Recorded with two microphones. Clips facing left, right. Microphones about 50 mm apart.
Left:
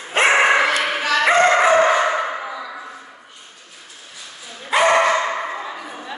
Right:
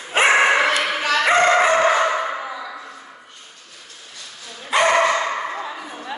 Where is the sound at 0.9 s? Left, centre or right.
Centre.